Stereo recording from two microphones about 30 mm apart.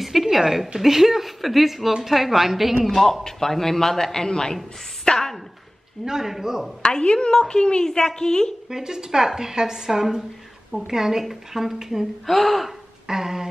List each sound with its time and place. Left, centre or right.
0.0 s a sound: centre
0.6 s speech: centre
2.9 s a man's voice: centre
5.1 s speech: left
6.0 s speech: centre
6.8 s a woman's voice: left
8.6 s a woman's voice: centre
12.3 s speech: centre
13.0 s a sound: centre